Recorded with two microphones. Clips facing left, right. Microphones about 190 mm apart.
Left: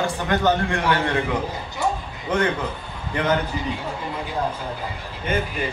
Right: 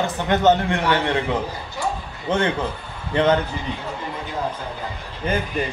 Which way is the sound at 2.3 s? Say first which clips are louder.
Right 1 dB; 30° right (ahead or behind).